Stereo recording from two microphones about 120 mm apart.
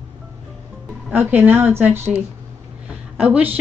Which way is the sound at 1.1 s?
15° right (ahead or behind).